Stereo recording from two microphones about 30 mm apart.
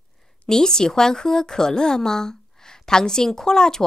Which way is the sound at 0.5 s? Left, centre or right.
Left.